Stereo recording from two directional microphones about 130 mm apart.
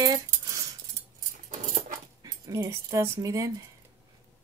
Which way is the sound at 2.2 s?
25° right (ahead or behind).